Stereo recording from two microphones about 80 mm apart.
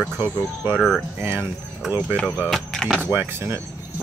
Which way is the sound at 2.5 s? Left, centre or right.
Centre.